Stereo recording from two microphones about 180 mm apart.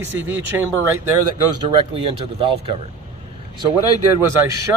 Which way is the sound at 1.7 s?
30° right (ahead or behind).